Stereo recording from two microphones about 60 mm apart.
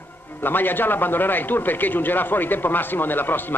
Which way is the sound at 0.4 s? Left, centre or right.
Left.